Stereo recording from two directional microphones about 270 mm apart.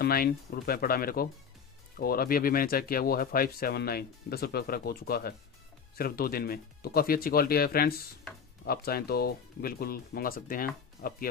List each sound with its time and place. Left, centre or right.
0.0 s speech: left